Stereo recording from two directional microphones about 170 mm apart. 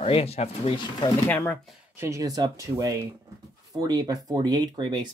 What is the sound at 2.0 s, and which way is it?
Speech, 20° right (ahead or behind).